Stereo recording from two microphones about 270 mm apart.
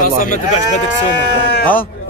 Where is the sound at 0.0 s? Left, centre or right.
Left.